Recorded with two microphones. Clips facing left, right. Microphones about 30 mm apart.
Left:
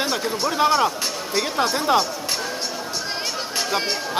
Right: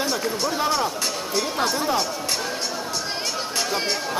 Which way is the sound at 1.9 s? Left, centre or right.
Left.